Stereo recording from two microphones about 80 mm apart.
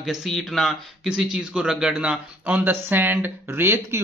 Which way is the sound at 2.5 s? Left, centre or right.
Right.